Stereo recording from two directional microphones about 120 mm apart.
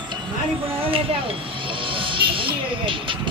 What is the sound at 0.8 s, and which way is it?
Music, 50° right (ahead or behind).